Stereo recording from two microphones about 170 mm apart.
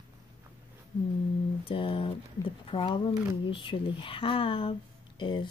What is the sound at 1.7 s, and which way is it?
Speech, 30° left (ahead or behind).